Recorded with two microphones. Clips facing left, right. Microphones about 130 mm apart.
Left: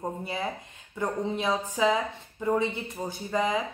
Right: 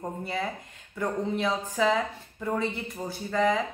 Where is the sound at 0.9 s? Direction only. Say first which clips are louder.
Right 1 dB; 20° left (ahead or behind).